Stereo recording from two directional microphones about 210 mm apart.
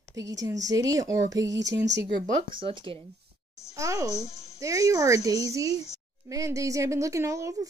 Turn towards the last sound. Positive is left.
turn(degrees=-15)  # may be behind; listen again after turning